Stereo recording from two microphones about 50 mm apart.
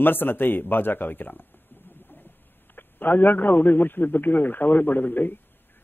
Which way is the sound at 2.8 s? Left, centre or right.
Left.